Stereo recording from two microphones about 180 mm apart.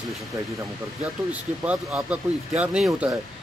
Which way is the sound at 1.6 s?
5° right (ahead or behind).